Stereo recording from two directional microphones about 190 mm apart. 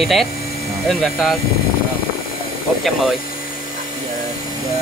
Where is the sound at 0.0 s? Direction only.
Centre (ahead or behind).